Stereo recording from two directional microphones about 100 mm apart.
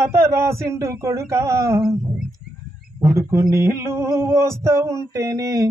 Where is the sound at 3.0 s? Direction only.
30° right (ahead or behind).